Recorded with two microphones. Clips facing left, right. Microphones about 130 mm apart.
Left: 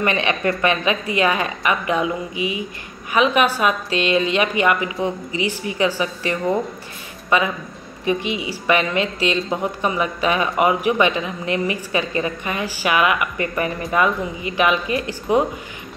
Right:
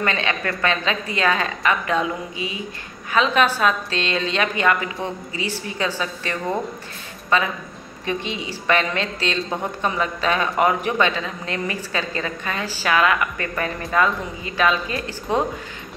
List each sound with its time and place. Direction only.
0.0 s a woman's voice: 20° left (ahead or behind)